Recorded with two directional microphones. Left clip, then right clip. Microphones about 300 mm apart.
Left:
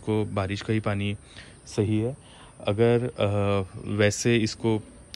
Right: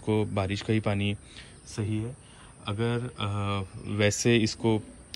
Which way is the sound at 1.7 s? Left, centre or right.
Centre.